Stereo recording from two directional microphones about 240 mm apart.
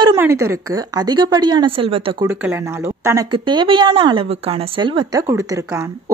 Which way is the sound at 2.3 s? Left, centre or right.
Centre.